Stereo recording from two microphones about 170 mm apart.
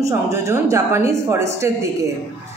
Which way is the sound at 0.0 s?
20° right (ahead or behind).